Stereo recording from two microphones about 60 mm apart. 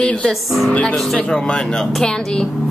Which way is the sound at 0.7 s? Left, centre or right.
Centre.